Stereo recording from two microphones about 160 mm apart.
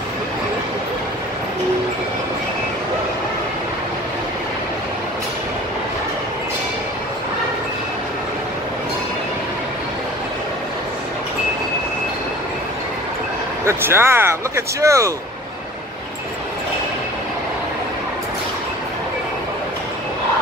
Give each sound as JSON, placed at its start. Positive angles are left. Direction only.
{"t": 13.7, "sound": "speech", "side_deg": -15}